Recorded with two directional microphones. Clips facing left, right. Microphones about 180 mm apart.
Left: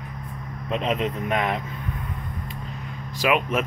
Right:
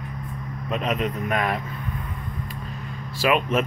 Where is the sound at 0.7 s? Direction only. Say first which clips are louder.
Left 1 dB; 30° left (ahead or behind).